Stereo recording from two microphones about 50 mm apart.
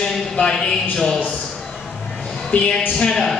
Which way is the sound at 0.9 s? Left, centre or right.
Centre.